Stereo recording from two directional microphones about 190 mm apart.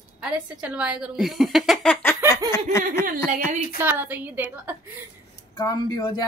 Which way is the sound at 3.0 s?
45° right (ahead or behind).